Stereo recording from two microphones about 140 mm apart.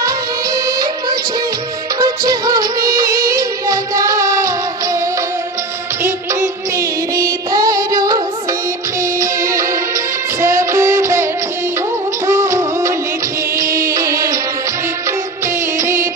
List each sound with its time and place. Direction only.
2.0 s music of bollywood: 25° right (ahead or behind)
3.3 s music: 25° right (ahead or behind)
6.0 s music: 20° right (ahead or behind)
10.4 s music: 20° right (ahead or behind)
12.3 s music: 20° right (ahead or behind)
15.0 s music of bollywood: 20° right (ahead or behind)